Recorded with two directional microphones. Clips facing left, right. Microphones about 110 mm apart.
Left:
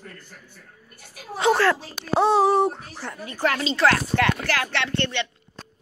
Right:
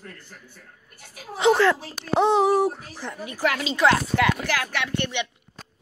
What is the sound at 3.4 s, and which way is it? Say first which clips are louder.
Speech: even; 5° right (ahead or behind).